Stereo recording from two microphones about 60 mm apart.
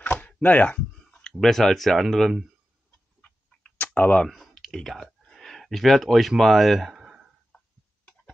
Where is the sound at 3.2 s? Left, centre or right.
Left.